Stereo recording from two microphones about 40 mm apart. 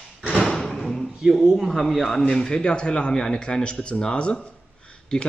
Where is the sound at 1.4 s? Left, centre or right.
Centre.